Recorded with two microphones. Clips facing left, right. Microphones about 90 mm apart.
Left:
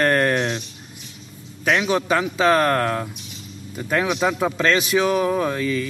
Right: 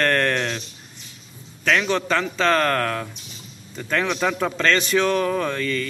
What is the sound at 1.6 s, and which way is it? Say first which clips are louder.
A man's voice: left 1 dB; 10° left (ahead or behind).